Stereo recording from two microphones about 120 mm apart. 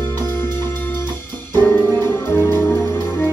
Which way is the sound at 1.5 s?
20° left (ahead or behind).